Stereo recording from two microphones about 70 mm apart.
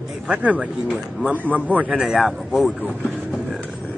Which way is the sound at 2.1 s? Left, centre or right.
Centre.